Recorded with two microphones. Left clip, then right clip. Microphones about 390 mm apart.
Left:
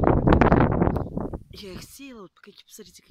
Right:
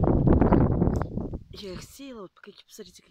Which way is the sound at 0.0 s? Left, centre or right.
Left.